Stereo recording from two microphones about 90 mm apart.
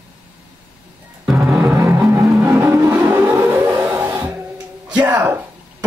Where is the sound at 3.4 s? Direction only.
25° right (ahead or behind).